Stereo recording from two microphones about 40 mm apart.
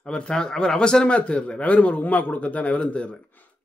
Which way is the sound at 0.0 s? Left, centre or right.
Left.